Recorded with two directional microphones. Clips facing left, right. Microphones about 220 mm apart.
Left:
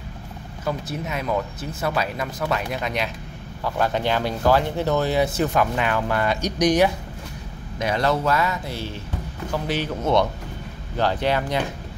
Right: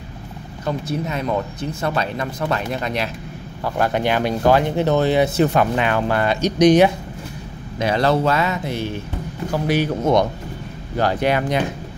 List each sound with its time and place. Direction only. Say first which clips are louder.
0.7 s speech: right 4 dB; centre (ahead or behind)
4.0 s speech: right 4 dB; 15° right (ahead or behind)